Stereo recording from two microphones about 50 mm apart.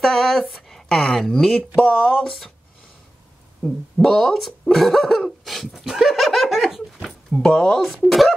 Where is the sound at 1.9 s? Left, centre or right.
Left.